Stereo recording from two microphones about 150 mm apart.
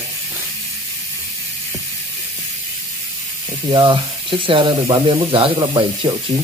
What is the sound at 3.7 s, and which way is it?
Speech, 30° right (ahead or behind).